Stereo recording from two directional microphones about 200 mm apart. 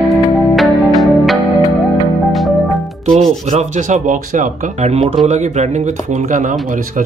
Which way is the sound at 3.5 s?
35° right (ahead or behind).